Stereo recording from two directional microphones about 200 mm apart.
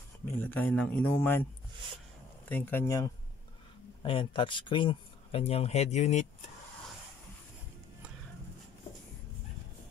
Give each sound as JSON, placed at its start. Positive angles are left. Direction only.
{"t": 0.2, "sound": "speech", "side_deg": 10}
{"t": 2.5, "sound": "speech", "side_deg": 10}
{"t": 4.0, "sound": "speech", "side_deg": 25}